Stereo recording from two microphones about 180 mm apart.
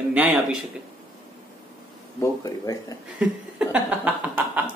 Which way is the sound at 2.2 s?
20° left (ahead or behind).